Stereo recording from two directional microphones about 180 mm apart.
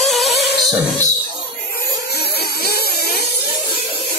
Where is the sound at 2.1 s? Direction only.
65° left (ahead or behind).